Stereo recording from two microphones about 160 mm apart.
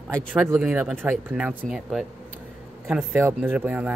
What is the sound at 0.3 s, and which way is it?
Speech, 10° right (ahead or behind).